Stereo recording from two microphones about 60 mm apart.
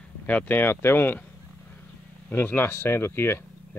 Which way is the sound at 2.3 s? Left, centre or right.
Left.